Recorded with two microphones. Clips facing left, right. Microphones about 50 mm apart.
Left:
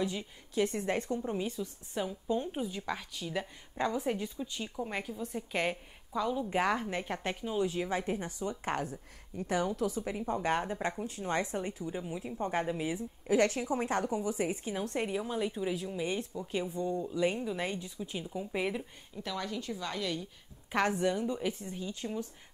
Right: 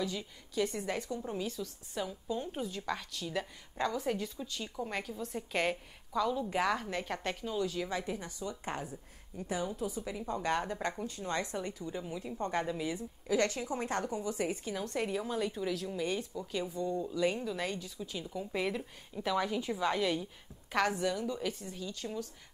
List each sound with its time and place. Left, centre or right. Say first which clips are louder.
0.0 s a woman's voice: left 2 dB; left
1.2 s a woman's voice: left 3 dB; left
6.5 s a woman's voice: left 2 dB; left
10.2 s a woman's voice: left 2 dB; left
10.6 s a woman's voice: left 1 dB; centre
11.1 s a woman's voice: left 3 dB; left
11.6 s a woman's voice: left 2 dB; centre
12.5 s a woman's voice: left 2 dB; left
13.3 s a woman's voice: left 3 dB; left; by 16.4 s centre
16.5 s a woman's voice: left 1 dB; left
18.8 s a woman's voice: right 1 dB; centre
20.7 s a woman's voice: left 2 dB; left